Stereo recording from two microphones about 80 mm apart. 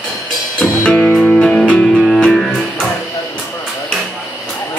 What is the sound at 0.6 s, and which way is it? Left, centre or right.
Music, centre.